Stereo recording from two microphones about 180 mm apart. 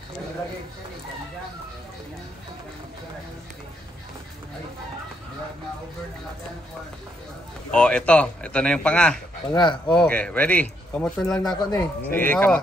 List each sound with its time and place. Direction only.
7.7 s speech: 5° left (ahead or behind)
9.5 s speech: 25° left (ahead or behind)
9.8 s speech: 5° left (ahead or behind)